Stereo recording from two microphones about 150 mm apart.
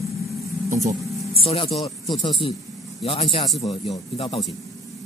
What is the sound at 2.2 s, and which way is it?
A man's voice, 30° left (ahead or behind).